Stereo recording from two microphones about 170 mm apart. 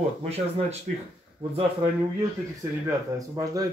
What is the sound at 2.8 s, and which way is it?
Speech, 20° right (ahead or behind).